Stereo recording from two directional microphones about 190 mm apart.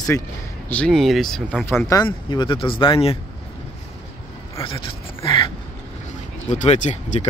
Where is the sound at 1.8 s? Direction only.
15° left (ahead or behind).